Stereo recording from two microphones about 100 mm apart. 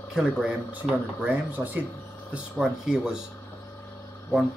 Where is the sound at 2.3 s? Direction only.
5° right (ahead or behind).